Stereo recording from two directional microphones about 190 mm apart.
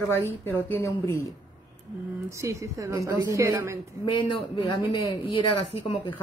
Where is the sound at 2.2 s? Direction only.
15° right (ahead or behind).